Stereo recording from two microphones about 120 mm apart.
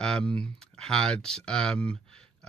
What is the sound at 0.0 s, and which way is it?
Speech, 5° left (ahead or behind).